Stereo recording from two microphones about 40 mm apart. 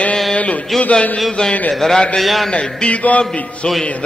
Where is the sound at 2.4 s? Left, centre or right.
Centre.